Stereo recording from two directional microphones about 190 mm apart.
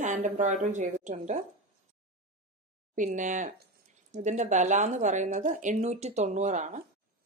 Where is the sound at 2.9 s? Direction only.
40° right (ahead or behind).